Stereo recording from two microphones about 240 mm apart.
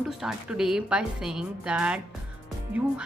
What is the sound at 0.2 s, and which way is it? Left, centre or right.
Speech, centre.